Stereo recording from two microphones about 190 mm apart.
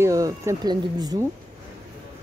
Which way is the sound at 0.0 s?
15° right (ahead or behind).